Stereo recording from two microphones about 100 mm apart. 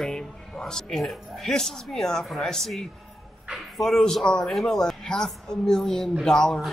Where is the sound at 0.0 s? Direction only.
5° left (ahead or behind).